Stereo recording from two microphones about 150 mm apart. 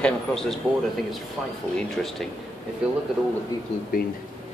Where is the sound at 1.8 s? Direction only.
Centre (ahead or behind).